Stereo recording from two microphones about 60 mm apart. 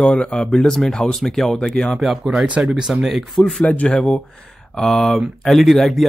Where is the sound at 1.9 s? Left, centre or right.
Centre.